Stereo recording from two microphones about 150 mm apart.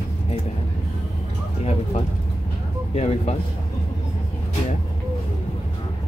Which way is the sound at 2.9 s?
45° left (ahead or behind).